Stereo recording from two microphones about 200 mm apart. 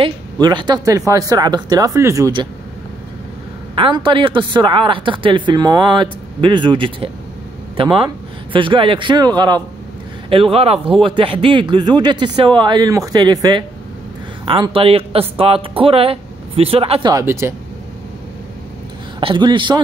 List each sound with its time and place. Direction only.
0.0 s speech: 20° right (ahead or behind)
3.7 s speech: 25° right (ahead or behind)
17.1 s speech: 15° right (ahead or behind)
19.1 s speech: 25° right (ahead or behind)